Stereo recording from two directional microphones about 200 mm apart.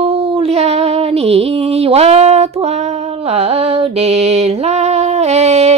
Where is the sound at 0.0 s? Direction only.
30° right (ahead or behind).